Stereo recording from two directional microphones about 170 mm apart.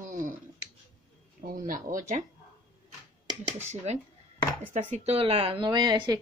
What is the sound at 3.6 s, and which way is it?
Speech, 40° right (ahead or behind).